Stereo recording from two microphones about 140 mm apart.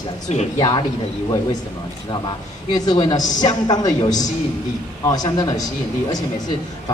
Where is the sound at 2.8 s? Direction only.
30° left (ahead or behind).